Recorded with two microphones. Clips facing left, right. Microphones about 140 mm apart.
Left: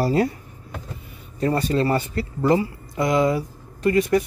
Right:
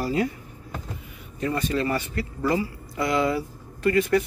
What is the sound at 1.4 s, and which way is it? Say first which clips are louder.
Speech: left 4 dB; 35° left (ahead or behind).